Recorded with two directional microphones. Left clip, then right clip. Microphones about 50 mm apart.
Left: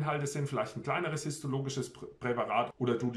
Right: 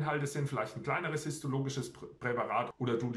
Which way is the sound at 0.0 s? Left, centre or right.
Centre.